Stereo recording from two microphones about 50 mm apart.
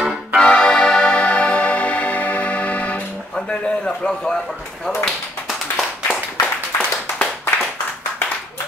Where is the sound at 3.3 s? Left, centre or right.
Left.